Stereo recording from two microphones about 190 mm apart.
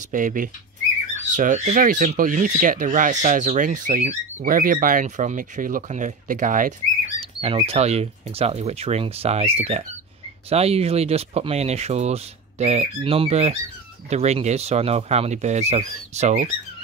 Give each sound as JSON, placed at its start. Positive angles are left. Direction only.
{"t": 0.1, "sound": "speech", "side_deg": -45}
{"t": 7.2, "sound": "speech", "side_deg": -30}